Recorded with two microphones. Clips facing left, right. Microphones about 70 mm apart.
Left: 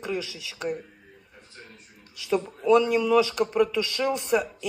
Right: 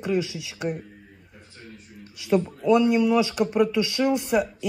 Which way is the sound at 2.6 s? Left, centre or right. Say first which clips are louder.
Even; centre.